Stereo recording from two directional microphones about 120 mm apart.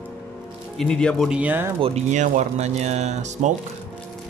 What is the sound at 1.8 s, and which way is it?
Speech, 60° right (ahead or behind).